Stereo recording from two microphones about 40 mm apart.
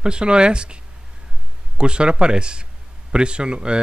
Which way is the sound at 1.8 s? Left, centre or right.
Right.